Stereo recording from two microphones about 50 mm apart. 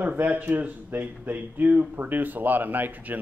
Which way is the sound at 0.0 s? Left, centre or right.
Right.